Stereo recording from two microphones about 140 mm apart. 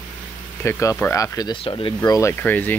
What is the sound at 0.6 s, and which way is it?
Speech, 20° left (ahead or behind).